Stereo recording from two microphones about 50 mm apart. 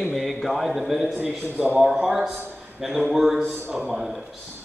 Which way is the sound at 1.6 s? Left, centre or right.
Right.